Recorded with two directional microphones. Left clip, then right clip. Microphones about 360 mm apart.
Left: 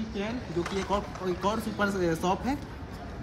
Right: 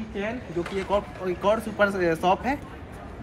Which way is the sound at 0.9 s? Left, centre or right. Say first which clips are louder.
Right 7 dB; centre.